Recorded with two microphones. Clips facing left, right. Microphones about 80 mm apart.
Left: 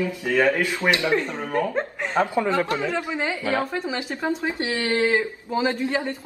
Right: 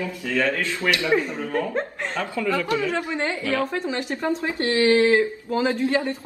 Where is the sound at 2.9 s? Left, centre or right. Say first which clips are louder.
Right 1 dB; centre.